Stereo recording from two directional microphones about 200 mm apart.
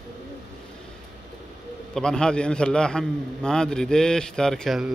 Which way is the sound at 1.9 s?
5° left (ahead or behind).